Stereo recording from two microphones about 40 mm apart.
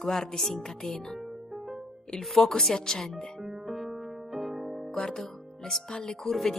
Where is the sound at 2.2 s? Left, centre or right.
Centre.